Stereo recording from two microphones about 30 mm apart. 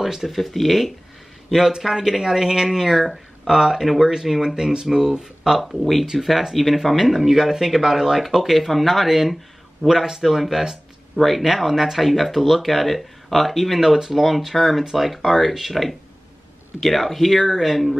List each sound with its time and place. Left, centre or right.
0.0 s speech: centre
0.4 s speech: centre
1.8 s speech: centre
5.6 s speech: centre
8.2 s speech: centre
9.8 s speech: centre
11.1 s speech: centre
15.7 s speech: centre